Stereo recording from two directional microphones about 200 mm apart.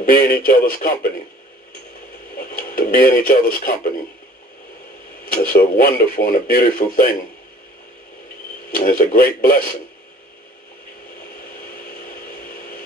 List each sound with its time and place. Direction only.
0.1 s speech: 45° left (ahead or behind)
2.3 s speech: 45° left (ahead or behind)
5.3 s speech: 45° left (ahead or behind)
8.7 s speech: 45° left (ahead or behind)
11.7 s a sound: 45° left (ahead or behind)